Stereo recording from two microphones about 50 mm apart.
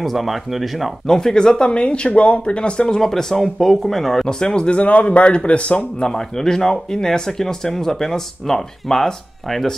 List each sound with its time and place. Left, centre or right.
0.0 s speech: centre
1.0 s speech: centre
3.0 s speech: centre; by 6.0 s left
6.0 s speech: centre